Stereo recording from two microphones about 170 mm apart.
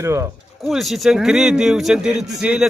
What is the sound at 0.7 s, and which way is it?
A man's voice, centre (ahead or behind).